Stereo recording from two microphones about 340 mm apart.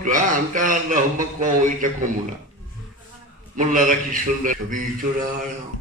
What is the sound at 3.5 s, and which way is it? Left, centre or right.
A man's voice, right.